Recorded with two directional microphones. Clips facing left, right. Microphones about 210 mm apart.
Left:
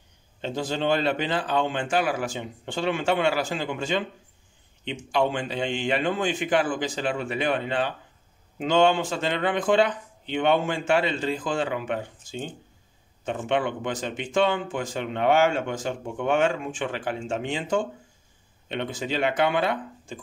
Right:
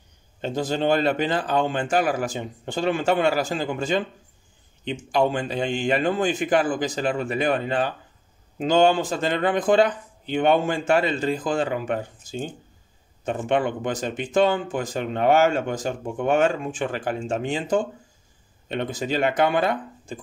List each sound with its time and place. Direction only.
0.4 s speech: 40° right (ahead or behind)